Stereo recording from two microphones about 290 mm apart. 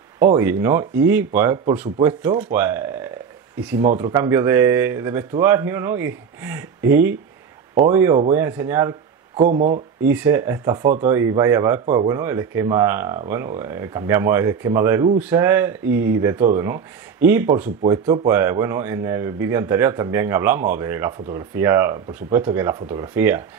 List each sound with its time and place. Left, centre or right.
0.2 s speech: centre
9.4 s speech: right
10.0 s speech: centre